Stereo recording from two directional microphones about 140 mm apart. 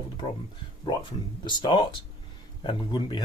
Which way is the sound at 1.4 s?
35° left (ahead or behind).